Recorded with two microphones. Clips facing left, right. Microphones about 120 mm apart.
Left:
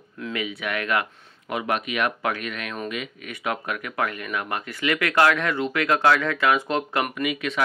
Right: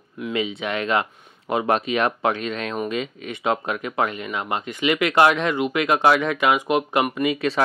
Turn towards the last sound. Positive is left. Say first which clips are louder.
# right 5 dB
turn(degrees=-35)  # may be behind; listen again after turning